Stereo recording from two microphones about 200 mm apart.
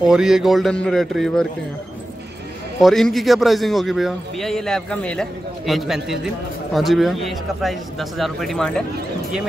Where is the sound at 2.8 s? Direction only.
Centre (ahead or behind).